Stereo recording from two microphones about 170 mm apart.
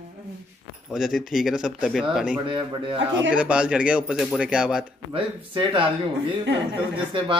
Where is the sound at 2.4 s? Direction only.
30° right (ahead or behind).